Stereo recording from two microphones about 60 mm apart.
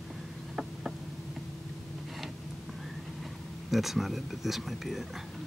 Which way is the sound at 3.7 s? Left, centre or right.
Centre.